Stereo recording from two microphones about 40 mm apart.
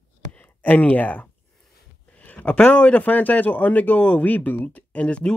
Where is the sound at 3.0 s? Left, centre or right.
Left.